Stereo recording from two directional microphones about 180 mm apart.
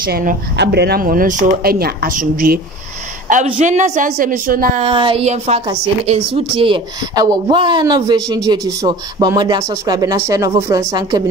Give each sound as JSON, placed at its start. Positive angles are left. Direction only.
{"t": 0.0, "sound": "a woman's voice", "side_deg": -50}
{"t": 0.6, "sound": "a woman's voice", "side_deg": -65}
{"t": 4.8, "sound": "speech", "side_deg": -30}